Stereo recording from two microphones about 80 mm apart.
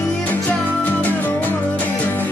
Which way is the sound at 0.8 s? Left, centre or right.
Left.